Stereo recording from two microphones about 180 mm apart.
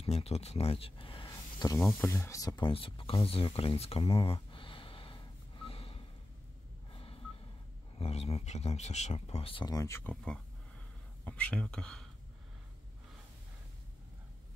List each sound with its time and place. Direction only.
0.0 s speech: 35° left (ahead or behind)
1.3 s a sound: 20° left (ahead or behind)
1.9 s speech: 10° left (ahead or behind); by 6.0 s 30° left (ahead or behind)
6.9 s telephone dialing: 30° left (ahead or behind)
8.0 s speech: 35° left (ahead or behind); by 12.1 s 5° left (ahead or behind)